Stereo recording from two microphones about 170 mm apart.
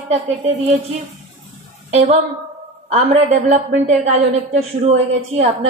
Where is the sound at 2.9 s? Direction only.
40° right (ahead or behind).